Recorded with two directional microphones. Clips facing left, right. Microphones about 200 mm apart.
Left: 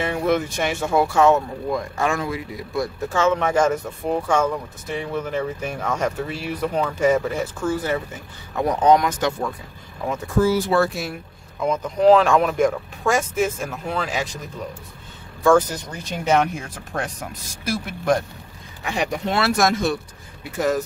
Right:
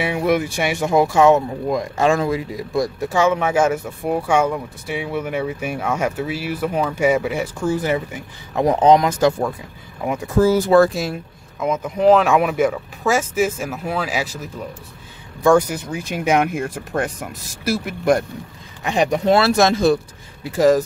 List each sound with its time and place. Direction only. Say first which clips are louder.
0.0 s speech: right 2 dB; 15° right (ahead or behind); by 2.9 s 35° right (ahead or behind)
3.0 s speech: right 1 dB; 10° right (ahead or behind)
10.4 s speech: right 6 dB; 45° right (ahead or behind)
11.6 s speech: right 1 dB; 5° right (ahead or behind)
19.2 s speech: right 5 dB; 35° right (ahead or behind)